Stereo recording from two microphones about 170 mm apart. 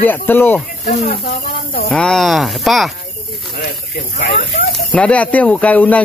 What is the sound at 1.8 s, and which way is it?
Speech, 5° left (ahead or behind).